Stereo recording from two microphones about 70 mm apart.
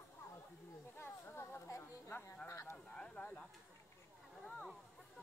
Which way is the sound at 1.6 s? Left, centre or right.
Left.